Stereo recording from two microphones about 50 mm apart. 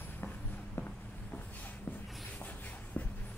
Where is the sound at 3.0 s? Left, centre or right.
Left.